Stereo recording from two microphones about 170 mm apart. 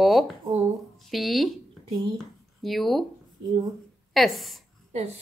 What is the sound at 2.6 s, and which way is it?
Speech, centre (ahead or behind).